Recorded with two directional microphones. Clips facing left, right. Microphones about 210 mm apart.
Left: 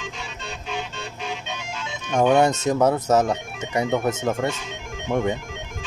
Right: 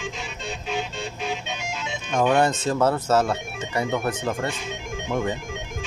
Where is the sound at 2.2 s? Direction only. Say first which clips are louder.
Left 3 dB; 20° left (ahead or behind).